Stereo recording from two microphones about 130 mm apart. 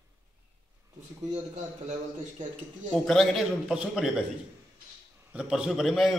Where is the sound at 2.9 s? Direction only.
5° left (ahead or behind).